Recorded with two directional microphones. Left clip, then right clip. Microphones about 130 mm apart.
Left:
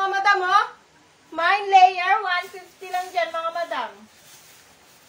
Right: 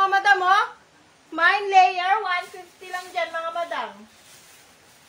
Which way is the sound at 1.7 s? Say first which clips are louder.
Left 4 dB; 35° right (ahead or behind).